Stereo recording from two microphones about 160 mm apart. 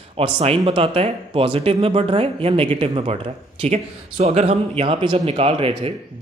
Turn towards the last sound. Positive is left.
turn(degrees=-35)  # may be behind; listen again after turning